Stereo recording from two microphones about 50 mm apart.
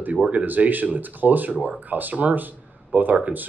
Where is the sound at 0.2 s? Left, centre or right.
Right.